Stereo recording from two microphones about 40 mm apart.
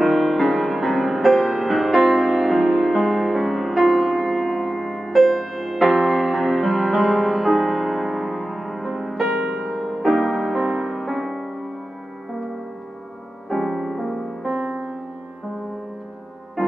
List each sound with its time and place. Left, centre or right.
0.0 s music: centre
13.5 s music: centre
16.6 s music: centre